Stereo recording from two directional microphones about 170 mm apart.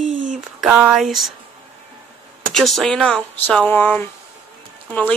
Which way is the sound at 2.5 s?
Centre (ahead or behind).